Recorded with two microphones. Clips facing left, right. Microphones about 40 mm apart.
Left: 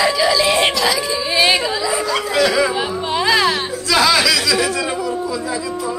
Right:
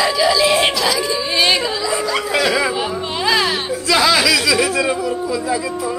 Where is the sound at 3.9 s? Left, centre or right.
Centre.